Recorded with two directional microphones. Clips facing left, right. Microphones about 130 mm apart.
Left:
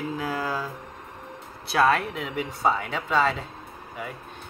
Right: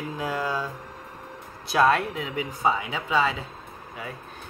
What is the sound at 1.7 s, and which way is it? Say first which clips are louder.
Speech: right 1 dB; centre (ahead or behind).